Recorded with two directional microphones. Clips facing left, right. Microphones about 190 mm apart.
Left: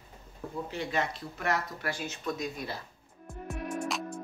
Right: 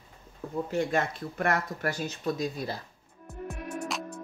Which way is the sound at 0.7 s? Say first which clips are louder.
Right 5 dB; 50° right (ahead or behind).